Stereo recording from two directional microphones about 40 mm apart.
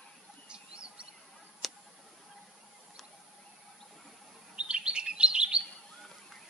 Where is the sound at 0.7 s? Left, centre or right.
Right.